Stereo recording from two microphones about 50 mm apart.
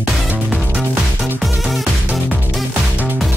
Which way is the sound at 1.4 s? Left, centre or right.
Centre.